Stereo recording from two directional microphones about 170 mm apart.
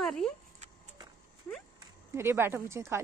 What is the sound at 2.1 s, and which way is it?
Speech, 15° right (ahead or behind).